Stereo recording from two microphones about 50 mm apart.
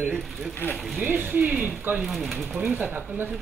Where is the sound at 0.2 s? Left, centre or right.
Centre.